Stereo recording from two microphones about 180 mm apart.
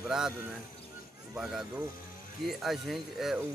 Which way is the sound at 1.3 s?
Centre (ahead or behind).